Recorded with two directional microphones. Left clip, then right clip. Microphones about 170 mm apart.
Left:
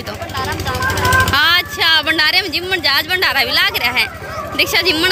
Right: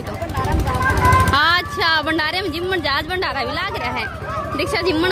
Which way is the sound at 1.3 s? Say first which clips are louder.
Left 3 dB; 20° right (ahead or behind).